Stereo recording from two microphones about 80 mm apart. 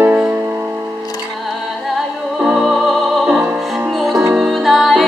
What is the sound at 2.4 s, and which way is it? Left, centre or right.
Music, centre.